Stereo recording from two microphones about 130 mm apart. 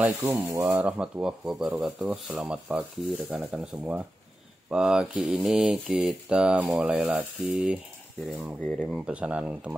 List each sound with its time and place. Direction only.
0.0 s mantra: 15° right (ahead or behind)
8.3 s speech: 5° right (ahead or behind)
8.5 s speech: 10° left (ahead or behind)
8.8 s mantra: 5° right (ahead or behind)